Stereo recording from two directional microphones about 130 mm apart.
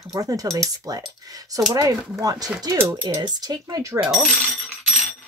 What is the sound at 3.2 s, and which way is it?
Speech, 30° right (ahead or behind).